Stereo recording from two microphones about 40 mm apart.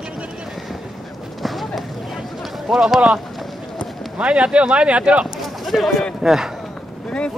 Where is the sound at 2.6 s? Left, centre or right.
Centre.